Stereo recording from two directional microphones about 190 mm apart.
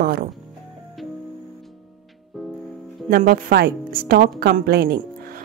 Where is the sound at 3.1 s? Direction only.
50° right (ahead or behind).